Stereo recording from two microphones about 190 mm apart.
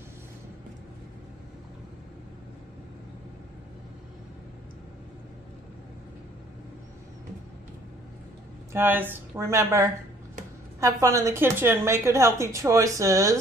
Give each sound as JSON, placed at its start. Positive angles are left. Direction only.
{"t": 8.7, "sound": "a woman's voice", "side_deg": -10}